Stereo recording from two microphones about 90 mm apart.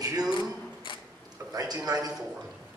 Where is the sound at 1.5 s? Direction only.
45° right (ahead or behind).